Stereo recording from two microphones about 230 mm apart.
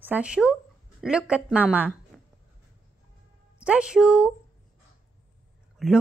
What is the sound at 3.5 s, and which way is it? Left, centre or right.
Speech, centre.